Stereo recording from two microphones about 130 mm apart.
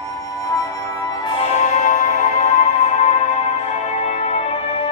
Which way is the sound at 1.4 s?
60° left (ahead or behind).